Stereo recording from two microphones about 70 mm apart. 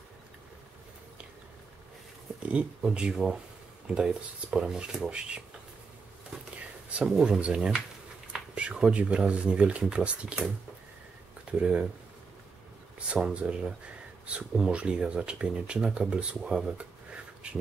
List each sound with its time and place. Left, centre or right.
2.4 s speech: centre
6.9 s speech: centre
11.6 s speech: centre
13.1 s speech: centre